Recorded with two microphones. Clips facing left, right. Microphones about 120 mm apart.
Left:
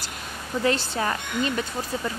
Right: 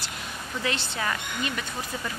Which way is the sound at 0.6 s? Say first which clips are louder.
Left 6 dB; 40° left (ahead or behind).